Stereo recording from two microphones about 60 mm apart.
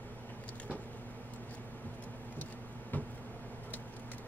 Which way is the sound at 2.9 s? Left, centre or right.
Left.